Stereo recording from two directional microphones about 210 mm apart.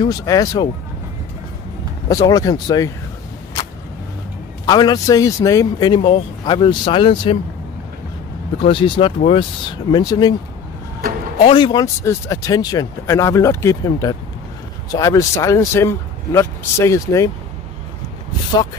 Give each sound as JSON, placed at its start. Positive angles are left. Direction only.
{"t": 0.0, "sound": "speech", "side_deg": 15}
{"t": 2.2, "sound": "speech", "side_deg": 15}
{"t": 4.6, "sound": "speech", "side_deg": 20}
{"t": 8.6, "sound": "speech", "side_deg": 25}
{"t": 11.3, "sound": "speech", "side_deg": 25}